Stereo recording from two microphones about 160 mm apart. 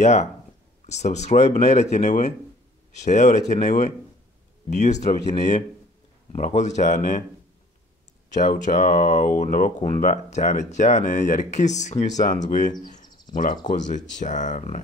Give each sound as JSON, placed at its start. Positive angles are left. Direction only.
{"t": 0.0, "sound": "speech", "side_deg": 45}
{"t": 6.3, "sound": "speech", "side_deg": 45}
{"t": 8.3, "sound": "speech", "side_deg": 50}